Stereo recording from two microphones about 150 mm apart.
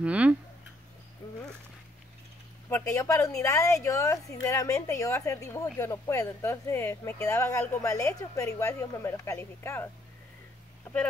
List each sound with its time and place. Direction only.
0.0 s speech: 10° right (ahead or behind)
1.2 s dog: 25° left (ahead or behind)
2.7 s a woman's voice: 15° left (ahead or behind)